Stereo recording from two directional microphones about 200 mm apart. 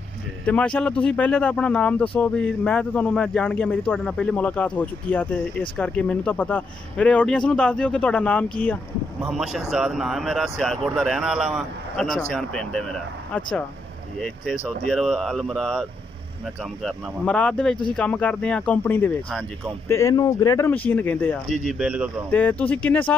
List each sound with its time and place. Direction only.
0.5 s speech: 5° left (ahead or behind)
21.5 s speech: 5° right (ahead or behind)
22.3 s speech: 10° left (ahead or behind)